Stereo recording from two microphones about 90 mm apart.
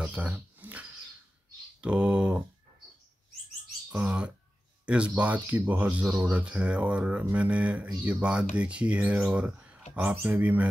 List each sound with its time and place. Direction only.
0.0 s a sound: 15° right (ahead or behind)
1.8 s speech: 15° right (ahead or behind)
4.0 s speech: 10° right (ahead or behind)